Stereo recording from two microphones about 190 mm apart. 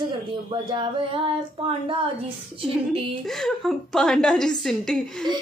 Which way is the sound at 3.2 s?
Centre (ahead or behind).